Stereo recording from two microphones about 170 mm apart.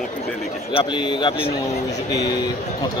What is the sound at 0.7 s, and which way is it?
Speech, 30° left (ahead or behind).